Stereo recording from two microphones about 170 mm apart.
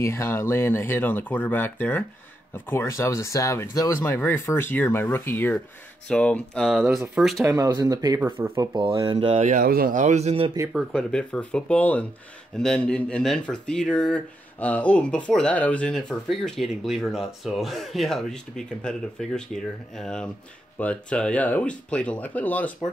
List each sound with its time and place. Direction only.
0.0 s speech: 15° left (ahead or behind); by 7.4 s centre (ahead or behind)
7.4 s speech: 20° right (ahead or behind); by 10.5 s 35° right (ahead or behind)
10.7 s speech: centre (ahead or behind)